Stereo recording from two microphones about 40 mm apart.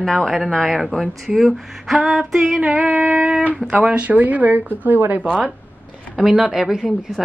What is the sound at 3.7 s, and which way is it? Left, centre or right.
Speech, right.